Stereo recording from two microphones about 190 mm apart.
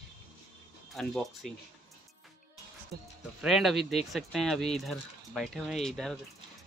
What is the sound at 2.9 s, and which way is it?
Speech, 55° right (ahead or behind).